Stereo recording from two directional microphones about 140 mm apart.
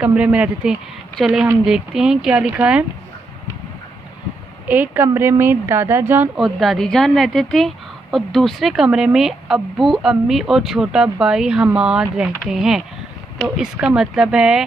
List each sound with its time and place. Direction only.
0.0 s a woman's voice: 10° right (ahead or behind)
4.6 s a woman's voice: 15° right (ahead or behind)
6.3 s a woman's voice: centre (ahead or behind)